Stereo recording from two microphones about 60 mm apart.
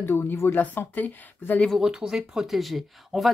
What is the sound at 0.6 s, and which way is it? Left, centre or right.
Speech, left.